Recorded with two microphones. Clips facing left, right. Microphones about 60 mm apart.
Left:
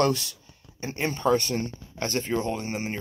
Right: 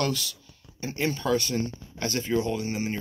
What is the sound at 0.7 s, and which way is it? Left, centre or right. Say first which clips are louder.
Speech: right 1 dB; left.